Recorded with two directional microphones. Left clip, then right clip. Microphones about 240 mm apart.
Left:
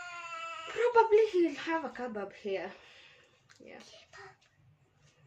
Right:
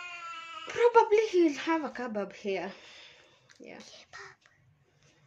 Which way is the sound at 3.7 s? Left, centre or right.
Right.